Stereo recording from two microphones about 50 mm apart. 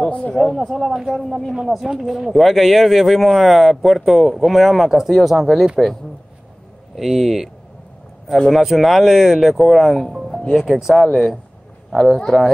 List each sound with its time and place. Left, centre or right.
0.3 s speech: centre
0.6 s speech: centre
1.5 s speech: centre
7.0 s speech: centre